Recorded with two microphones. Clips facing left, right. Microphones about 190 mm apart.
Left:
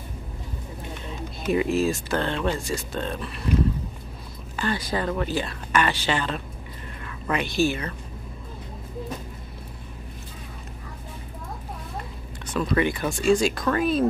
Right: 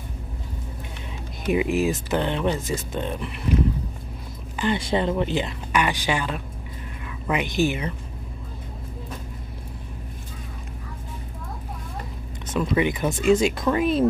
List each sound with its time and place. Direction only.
1.5 s speech: 15° right (ahead or behind)
4.6 s speech: 20° right (ahead or behind)
12.4 s speech: 20° right (ahead or behind)